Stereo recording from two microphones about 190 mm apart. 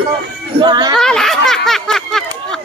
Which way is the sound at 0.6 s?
20° right (ahead or behind).